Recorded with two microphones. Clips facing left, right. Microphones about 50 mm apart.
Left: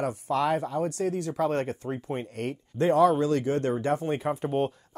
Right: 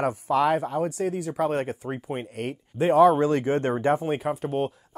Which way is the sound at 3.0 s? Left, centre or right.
Right.